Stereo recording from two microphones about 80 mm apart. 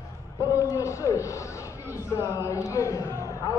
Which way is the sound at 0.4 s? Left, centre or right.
Left.